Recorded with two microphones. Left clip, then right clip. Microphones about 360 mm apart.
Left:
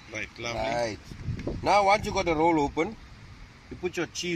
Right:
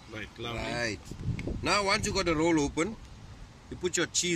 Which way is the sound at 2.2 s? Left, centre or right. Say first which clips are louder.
Left 4 dB; centre.